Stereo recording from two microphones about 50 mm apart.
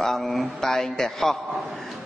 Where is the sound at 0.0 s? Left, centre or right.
Centre.